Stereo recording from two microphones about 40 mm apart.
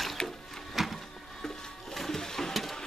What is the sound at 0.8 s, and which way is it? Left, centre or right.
Printer, centre.